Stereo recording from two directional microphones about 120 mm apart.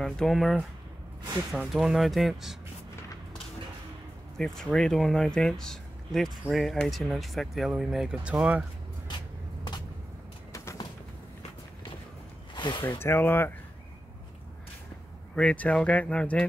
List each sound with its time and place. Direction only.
0.0 s speech: 5° left (ahead or behind)
1.7 s speech: centre (ahead or behind)
4.4 s speech: 5° left (ahead or behind); by 8.6 s 10° right (ahead or behind)
10.5 s a sound: 25° left (ahead or behind)
12.5 s a sound: 40° left (ahead or behind)
13.0 s speech: 20° left (ahead or behind)
15.3 s speech: 10° left (ahead or behind)